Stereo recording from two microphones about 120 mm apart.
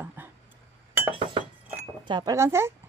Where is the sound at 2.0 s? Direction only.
40° right (ahead or behind).